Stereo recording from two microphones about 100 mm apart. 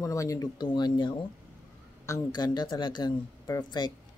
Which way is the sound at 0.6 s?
45° left (ahead or behind).